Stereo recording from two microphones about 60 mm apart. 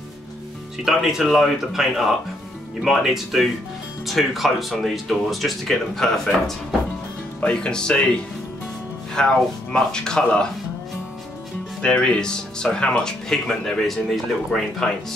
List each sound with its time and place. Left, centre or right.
0.8 s speech: centre
7.3 s speech: centre
11.8 s speech: centre